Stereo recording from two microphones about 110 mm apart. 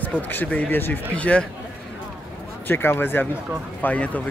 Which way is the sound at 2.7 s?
20° left (ahead or behind).